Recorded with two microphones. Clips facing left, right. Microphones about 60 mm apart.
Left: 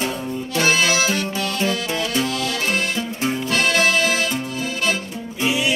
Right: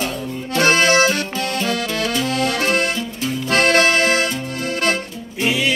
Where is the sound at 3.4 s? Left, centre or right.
Right.